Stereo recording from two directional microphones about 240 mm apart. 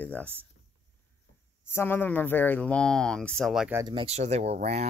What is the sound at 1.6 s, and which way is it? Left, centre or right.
Speech, centre.